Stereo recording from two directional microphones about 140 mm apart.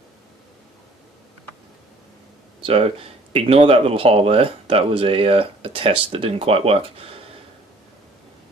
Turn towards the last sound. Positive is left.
turn(degrees=-40)  # may be behind; listen again after turning